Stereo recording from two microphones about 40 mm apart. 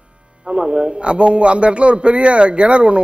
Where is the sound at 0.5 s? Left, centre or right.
Right.